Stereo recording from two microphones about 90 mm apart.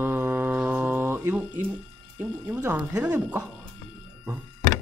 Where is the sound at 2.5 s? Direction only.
15° right (ahead or behind).